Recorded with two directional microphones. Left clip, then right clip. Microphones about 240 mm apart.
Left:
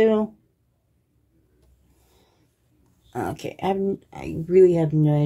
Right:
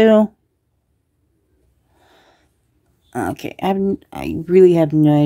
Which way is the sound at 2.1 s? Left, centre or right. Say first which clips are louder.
Right 10 dB; right.